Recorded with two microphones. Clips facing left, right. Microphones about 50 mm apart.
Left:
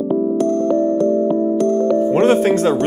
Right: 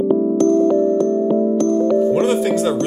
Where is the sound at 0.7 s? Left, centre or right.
Centre.